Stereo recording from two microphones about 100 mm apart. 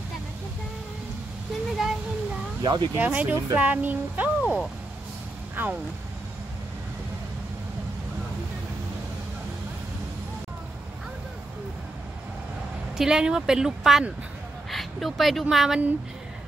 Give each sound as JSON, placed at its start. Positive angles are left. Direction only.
{"t": 1.8, "sound": "child singing", "side_deg": -5}
{"t": 2.6, "sound": "speech", "side_deg": -50}
{"t": 3.0, "sound": "speech", "side_deg": -15}
{"t": 5.6, "sound": "speech", "side_deg": -20}
{"t": 12.9, "sound": "speech", "side_deg": -5}